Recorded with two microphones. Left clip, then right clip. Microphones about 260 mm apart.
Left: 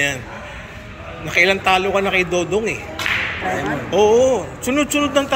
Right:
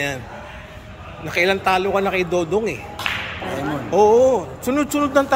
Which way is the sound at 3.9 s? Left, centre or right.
Centre.